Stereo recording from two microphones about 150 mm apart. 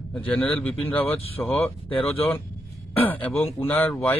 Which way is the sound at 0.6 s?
10° left (ahead or behind).